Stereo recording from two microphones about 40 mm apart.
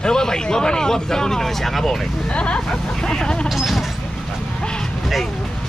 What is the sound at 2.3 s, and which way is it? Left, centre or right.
Speech, left.